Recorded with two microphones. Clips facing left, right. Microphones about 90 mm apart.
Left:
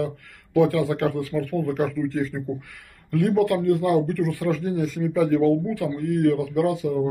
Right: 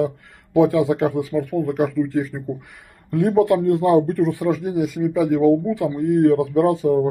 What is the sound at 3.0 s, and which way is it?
Speech, 25° right (ahead or behind).